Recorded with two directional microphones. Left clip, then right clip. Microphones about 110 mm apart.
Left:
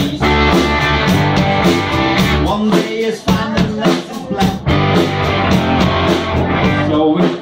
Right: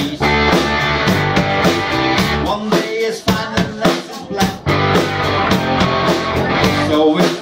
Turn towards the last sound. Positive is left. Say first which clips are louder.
# even
turn(degrees=-45)  # may be behind; listen again after turning